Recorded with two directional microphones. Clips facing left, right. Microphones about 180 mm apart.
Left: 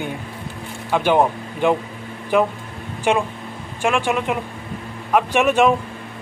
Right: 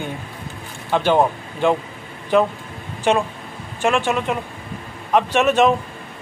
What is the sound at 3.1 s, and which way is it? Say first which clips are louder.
Speech: right 1 dB; 10° left (ahead or behind).